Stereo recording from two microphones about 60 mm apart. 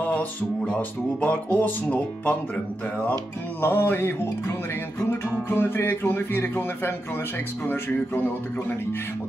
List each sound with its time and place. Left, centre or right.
0.0 s music: left
0.7 s speech: left
3.6 s speech: left
5.5 s speech: left